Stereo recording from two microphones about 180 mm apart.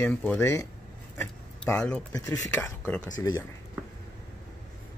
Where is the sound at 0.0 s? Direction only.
10° left (ahead or behind).